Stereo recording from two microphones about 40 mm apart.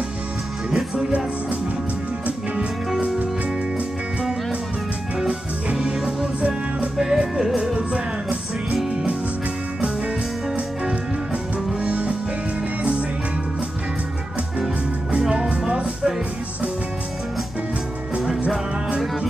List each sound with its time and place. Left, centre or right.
5.8 s music: centre
7.7 s music: right
11.8 s music: right
15.2 s music: centre